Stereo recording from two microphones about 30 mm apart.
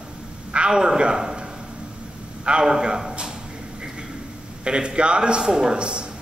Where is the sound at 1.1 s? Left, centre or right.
Right.